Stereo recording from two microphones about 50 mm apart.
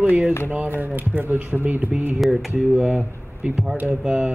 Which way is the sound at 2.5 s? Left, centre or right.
Right.